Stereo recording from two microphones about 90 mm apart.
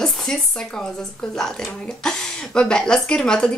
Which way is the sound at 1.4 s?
5° left (ahead or behind).